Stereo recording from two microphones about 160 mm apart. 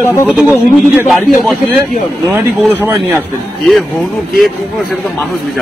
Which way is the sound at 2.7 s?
10° right (ahead or behind).